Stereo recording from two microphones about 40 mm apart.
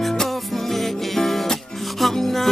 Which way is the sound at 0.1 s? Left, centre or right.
Centre.